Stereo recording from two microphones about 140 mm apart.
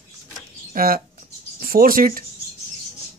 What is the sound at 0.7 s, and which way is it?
Speech, 90° right.